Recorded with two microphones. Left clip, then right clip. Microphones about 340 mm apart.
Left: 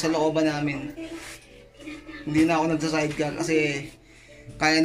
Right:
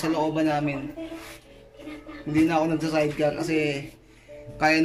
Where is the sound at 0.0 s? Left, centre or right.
Centre.